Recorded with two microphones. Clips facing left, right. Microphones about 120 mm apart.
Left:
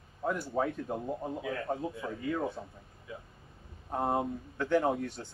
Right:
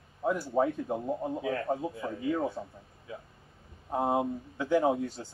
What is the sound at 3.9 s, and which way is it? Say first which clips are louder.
Speech: right 3 dB; centre (ahead or behind).